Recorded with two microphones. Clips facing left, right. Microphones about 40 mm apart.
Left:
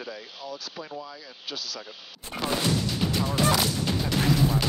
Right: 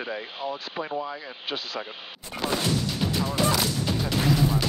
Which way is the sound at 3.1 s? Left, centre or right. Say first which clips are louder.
Even; centre.